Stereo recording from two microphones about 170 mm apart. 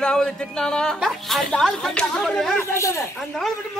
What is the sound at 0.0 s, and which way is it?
Speech, 5° left (ahead or behind).